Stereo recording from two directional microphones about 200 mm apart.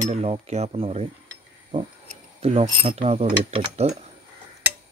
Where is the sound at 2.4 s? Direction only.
30° right (ahead or behind).